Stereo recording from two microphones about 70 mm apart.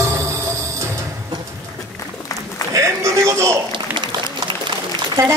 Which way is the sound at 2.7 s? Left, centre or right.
Right.